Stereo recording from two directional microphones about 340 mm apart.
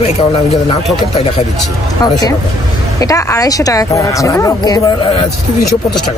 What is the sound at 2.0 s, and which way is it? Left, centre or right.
Speech, centre.